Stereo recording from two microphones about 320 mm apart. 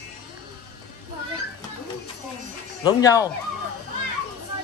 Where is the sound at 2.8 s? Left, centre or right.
Centre.